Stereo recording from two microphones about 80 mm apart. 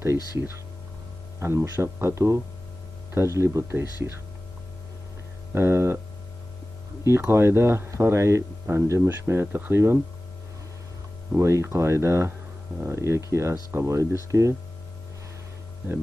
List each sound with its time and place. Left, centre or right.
0.0 s speech: right
5.5 s speech: right
7.1 s speech: right
11.3 s speech: right